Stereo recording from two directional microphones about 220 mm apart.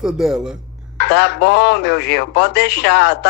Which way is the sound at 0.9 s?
50° left (ahead or behind).